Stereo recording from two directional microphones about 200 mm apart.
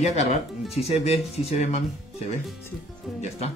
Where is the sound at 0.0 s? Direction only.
30° left (ahead or behind).